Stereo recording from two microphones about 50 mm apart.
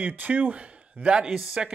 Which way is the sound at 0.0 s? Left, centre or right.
Right.